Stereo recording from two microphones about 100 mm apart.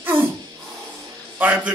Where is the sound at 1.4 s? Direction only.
15° right (ahead or behind).